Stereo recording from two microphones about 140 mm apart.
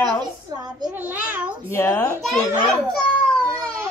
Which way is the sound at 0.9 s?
10° right (ahead or behind).